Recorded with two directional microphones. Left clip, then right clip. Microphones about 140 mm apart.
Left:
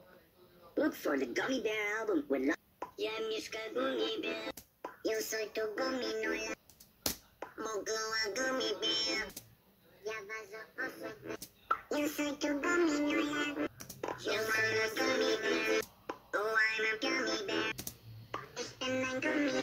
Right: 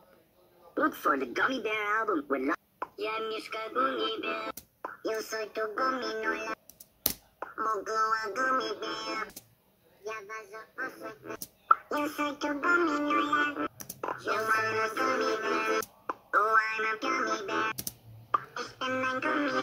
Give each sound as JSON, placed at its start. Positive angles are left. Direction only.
{"t": 0.7, "sound": "speech", "side_deg": -25}
{"t": 18.3, "sound": "music", "side_deg": -30}